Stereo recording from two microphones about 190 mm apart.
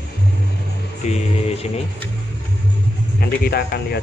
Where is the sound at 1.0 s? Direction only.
35° left (ahead or behind).